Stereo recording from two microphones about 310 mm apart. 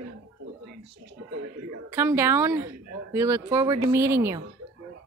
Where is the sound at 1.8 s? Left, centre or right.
Centre.